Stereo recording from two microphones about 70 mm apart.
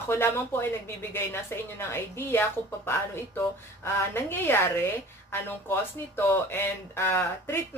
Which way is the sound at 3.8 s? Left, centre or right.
Left.